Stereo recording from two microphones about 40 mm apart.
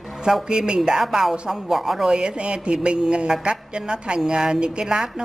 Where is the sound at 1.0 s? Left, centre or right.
Centre.